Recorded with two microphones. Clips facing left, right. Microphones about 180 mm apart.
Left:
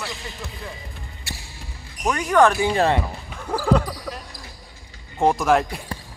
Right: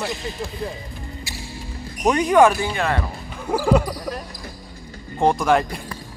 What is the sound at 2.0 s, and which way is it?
Speech, 20° right (ahead or behind).